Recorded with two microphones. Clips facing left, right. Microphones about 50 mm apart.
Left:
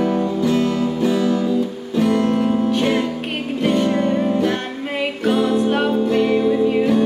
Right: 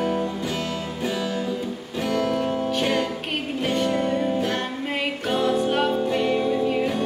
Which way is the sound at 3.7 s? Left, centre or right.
Centre.